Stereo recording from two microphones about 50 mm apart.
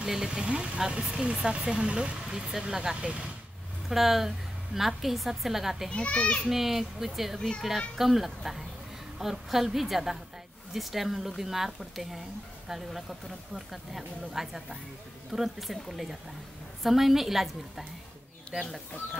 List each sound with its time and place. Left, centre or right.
0.0 s speech: centre
2.3 s speech: centre
3.9 s speech: centre
5.9 s a child's voice: left
6.4 s speech: centre
18.5 s speech: centre